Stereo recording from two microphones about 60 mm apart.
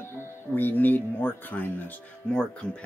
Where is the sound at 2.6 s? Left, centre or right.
Centre.